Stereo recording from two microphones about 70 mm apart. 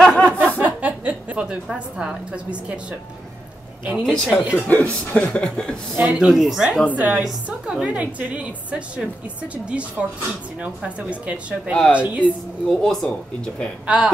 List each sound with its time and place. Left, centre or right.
0.0 s chuckle: centre
0.6 s a woman's voice: right
4.0 s speech: centre
4.6 s speech: left
5.9 s speech: centre
6.9 s a woman's voice: right
12.6 s speech: centre
13.8 s speech: centre